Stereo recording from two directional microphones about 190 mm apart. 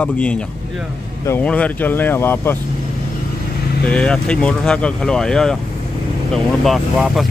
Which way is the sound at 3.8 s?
5° left (ahead or behind).